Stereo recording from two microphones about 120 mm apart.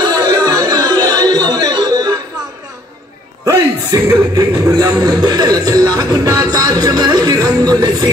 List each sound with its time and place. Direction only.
0.0 s music: 35° right (ahead or behind)
3.4 s music: 25° right (ahead or behind)
4.7 s speech: 30° right (ahead or behind)